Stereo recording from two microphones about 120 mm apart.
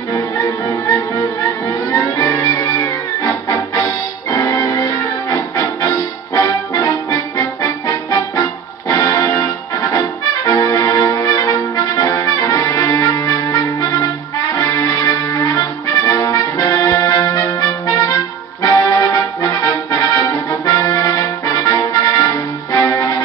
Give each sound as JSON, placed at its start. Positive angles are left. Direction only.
{"t": 0.1, "sound": "music", "side_deg": 30}
{"t": 16.1, "sound": "brass instrument", "side_deg": 30}